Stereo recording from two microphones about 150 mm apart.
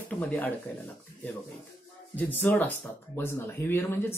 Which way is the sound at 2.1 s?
10° left (ahead or behind).